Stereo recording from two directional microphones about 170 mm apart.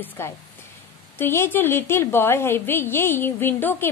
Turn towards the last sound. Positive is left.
turn(degrees=10)  # may be behind; listen again after turning